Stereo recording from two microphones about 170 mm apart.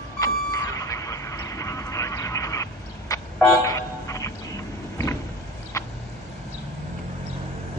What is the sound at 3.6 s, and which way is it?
Vehicle, 20° left (ahead or behind).